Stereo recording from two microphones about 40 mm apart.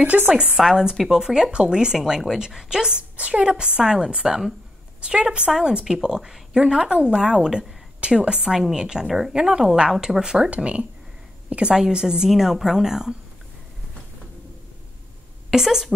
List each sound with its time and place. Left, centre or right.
0.1 s speech: right
0.6 s a woman's voice: centre
7.2 s a woman's voice: centre
8.5 s speech: centre
9.0 s a woman's voice: centre
9.3 s a woman's voice: centre
10.5 s a woman's voice: right
11.7 s speech: centre
15.5 s speech: centre